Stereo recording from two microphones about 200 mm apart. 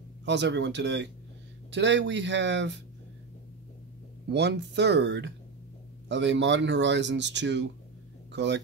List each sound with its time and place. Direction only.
0.2 s speech: 60° right (ahead or behind)
4.3 s speech: 55° right (ahead or behind)